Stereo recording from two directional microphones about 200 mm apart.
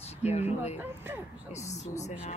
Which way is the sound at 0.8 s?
10° right (ahead or behind).